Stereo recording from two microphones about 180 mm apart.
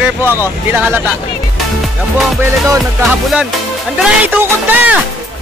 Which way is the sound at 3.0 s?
5° right (ahead or behind).